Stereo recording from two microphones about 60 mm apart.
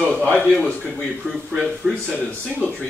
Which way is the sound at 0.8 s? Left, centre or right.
Centre.